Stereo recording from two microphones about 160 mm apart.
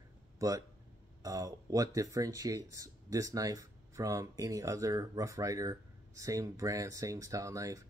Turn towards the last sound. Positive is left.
turn(degrees=-20)  # may be behind; listen again after turning